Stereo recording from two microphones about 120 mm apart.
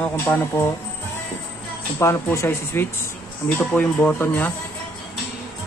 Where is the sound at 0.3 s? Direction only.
15° left (ahead or behind).